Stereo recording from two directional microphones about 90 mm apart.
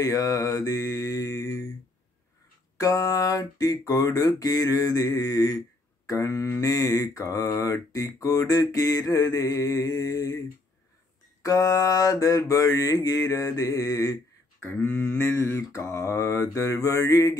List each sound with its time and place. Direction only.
0.0 s mantra: 40° left (ahead or behind)
2.8 s mantra: 40° left (ahead or behind)
11.4 s mantra: 40° left (ahead or behind)
14.6 s mantra: 25° left (ahead or behind)